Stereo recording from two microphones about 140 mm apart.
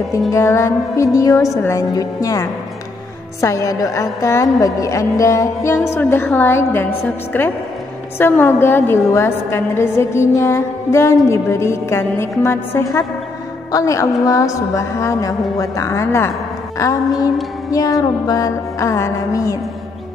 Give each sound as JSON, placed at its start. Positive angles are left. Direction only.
{"t": 0.3, "sound": "a woman's voice", "side_deg": 20}
{"t": 16.7, "sound": "music", "side_deg": 20}
{"t": 17.6, "sound": "a woman's voice", "side_deg": 25}